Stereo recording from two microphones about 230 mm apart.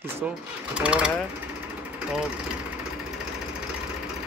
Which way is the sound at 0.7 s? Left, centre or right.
Centre.